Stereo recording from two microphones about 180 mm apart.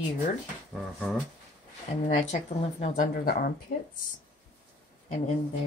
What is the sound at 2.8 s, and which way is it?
Speech, 45° left (ahead or behind).